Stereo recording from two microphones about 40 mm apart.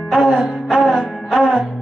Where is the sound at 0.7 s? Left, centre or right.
Centre.